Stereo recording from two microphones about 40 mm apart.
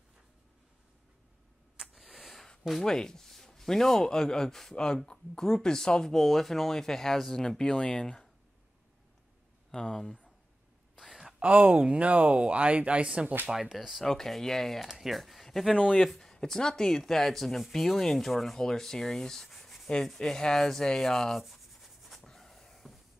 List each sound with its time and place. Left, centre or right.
1.8 s a sound: centre
2.7 s speech: centre
6.1 s speech: centre
9.7 s speech: centre
11.3 s speech: right
13.5 s speech: centre
14.0 s speech: centre
14.9 s speech: centre
15.7 s speech: left
16.0 s speech: centre
21.4 s rub: centre
22.2 s a sound: centre